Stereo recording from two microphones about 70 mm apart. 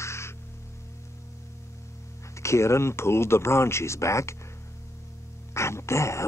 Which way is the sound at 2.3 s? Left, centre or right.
Left.